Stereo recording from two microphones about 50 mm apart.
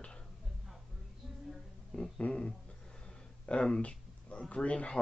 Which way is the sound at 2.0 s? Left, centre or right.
Centre.